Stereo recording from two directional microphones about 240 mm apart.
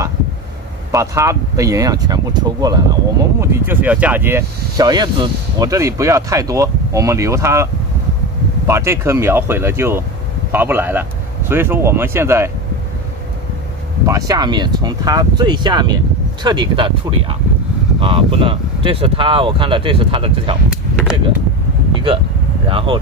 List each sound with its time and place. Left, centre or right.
0.9 s speech: centre
14.0 s speech: centre
22.7 s speech: right